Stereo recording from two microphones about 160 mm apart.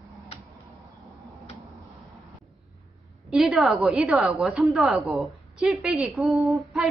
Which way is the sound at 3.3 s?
Centre (ahead or behind).